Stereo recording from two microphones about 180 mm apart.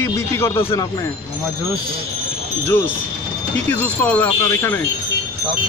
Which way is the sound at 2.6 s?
10° left (ahead or behind).